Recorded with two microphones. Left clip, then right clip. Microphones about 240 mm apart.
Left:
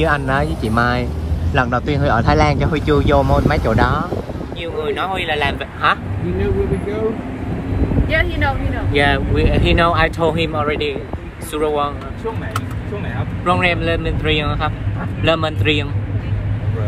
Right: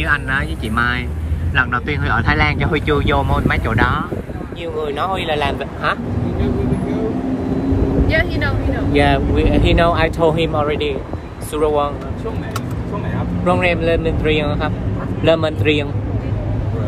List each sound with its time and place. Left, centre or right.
0.0 s speech: left
4.8 s speech: centre
8.1 s speech: centre
8.9 s speech: centre
13.5 s speech: centre